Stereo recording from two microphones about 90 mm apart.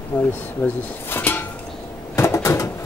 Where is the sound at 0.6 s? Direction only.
25° left (ahead or behind).